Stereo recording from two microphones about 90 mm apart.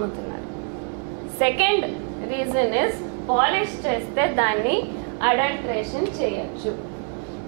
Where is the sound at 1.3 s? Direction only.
15° right (ahead or behind).